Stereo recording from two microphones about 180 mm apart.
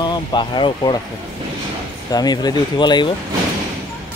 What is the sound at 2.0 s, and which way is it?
Speech, 20° left (ahead or behind).